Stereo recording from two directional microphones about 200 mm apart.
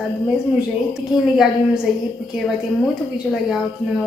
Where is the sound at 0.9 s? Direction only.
5° right (ahead or behind).